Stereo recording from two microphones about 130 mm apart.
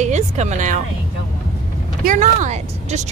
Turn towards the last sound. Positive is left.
turn(degrees=-60)  # may be behind; listen again after turning